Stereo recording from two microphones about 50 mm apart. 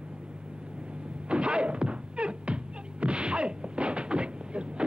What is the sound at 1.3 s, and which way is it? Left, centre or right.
Music, right.